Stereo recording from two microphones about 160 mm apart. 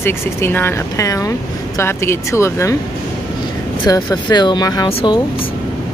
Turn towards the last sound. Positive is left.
turn(degrees=35)  # may be behind; listen again after turning